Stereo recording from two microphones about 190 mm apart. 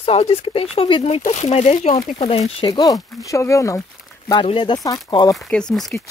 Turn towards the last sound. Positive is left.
turn(degrees=5)  # may be behind; listen again after turning